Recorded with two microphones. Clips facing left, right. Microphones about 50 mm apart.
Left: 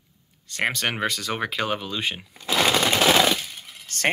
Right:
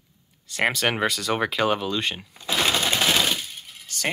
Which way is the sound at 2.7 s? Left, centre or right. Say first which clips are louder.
Left 5 dB; left.